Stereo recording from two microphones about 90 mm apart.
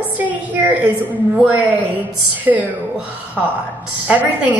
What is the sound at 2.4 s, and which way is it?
A woman's voice, 15° right (ahead or behind).